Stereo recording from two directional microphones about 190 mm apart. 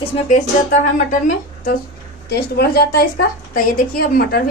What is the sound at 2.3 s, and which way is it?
A woman's voice, 55° left (ahead or behind).